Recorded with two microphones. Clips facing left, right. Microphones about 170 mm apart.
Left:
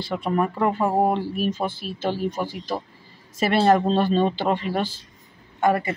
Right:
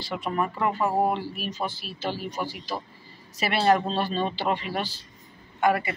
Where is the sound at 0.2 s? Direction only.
45° left (ahead or behind).